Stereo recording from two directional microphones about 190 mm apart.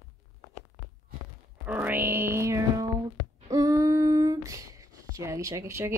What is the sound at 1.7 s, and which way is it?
Music, 10° right (ahead or behind).